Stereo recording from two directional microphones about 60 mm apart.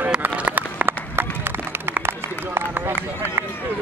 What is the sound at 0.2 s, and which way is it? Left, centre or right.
Run, right.